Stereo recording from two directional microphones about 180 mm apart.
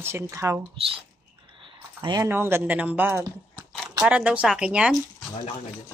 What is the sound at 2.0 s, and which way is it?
Speech, 25° right (ahead or behind).